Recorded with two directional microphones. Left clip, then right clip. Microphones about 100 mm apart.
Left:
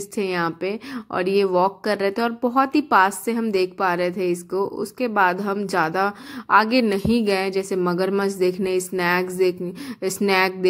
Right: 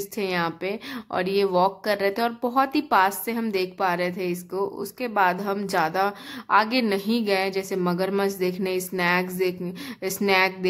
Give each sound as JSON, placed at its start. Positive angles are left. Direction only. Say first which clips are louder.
{"t": 0.1, "sound": "a woman's voice", "louder": "left 3 dB", "side_deg": 35}